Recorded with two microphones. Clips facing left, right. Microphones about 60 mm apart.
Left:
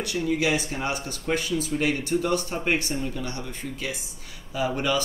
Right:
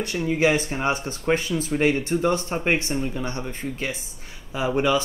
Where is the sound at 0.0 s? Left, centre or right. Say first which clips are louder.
Right 3 dB; right.